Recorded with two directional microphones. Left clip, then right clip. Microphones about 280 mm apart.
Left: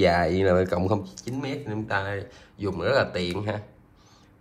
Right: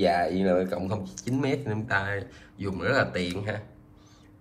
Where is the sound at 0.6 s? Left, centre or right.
Left.